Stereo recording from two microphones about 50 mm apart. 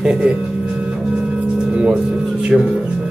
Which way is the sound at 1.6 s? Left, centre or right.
Right.